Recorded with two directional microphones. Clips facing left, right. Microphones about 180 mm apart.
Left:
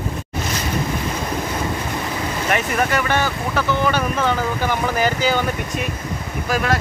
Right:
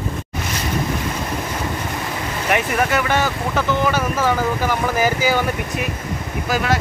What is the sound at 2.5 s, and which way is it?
Speech, 15° right (ahead or behind).